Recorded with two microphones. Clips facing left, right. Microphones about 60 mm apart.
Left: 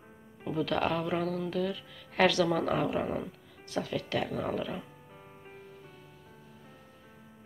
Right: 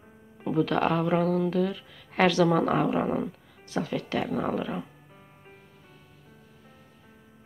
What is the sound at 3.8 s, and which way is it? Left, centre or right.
Speech, right.